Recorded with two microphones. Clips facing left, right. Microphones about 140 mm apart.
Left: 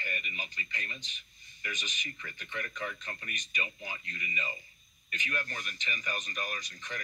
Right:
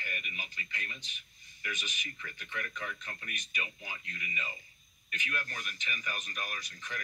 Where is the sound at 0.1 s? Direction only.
20° left (ahead or behind).